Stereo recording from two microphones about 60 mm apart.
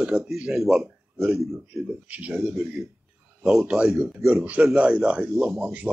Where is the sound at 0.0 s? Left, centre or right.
Centre.